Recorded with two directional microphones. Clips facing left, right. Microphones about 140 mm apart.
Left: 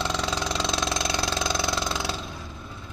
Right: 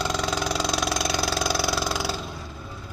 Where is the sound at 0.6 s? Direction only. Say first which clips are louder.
Right 2 dB; 25° left (ahead or behind).